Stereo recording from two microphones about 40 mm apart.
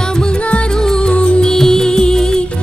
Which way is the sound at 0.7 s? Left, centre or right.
Centre.